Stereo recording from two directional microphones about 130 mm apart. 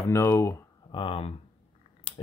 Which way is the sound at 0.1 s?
20° left (ahead or behind).